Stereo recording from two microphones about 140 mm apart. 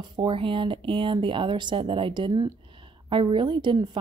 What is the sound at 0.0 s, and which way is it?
Speech, 35° right (ahead or behind).